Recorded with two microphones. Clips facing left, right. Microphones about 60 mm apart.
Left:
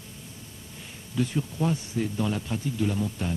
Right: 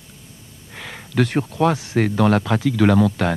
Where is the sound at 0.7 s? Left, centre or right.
Right.